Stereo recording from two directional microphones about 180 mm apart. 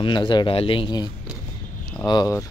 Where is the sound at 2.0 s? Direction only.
20° left (ahead or behind).